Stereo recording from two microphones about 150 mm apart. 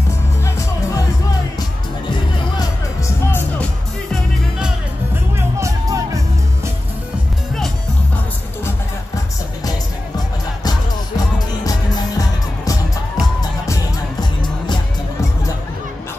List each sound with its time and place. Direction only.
1.6 s music: 25° left (ahead or behind)
3.3 s music: 15° left (ahead or behind)
4.1 s music: 5° right (ahead or behind)
5.6 s music: 20° right (ahead or behind)
10.1 s music: 25° left (ahead or behind)